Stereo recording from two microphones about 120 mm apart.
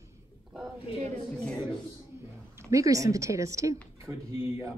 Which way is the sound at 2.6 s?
25° right (ahead or behind).